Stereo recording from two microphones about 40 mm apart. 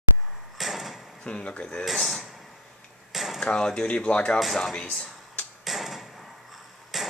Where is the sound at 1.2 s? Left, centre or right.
Left.